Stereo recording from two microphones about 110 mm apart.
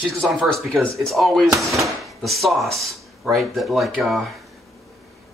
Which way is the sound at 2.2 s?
Centre (ahead or behind).